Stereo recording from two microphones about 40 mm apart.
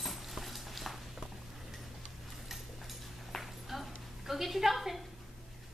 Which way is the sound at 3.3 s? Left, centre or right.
Centre.